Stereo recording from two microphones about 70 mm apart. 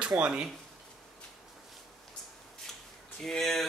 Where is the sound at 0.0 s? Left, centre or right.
Right.